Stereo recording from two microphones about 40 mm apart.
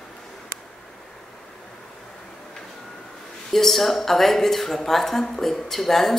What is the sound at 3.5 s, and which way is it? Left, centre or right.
A woman's voice, centre.